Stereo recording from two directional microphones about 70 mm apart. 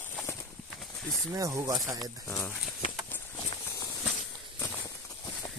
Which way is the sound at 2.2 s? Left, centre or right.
Left.